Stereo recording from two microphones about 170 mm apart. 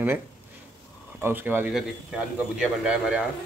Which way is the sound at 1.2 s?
10° right (ahead or behind).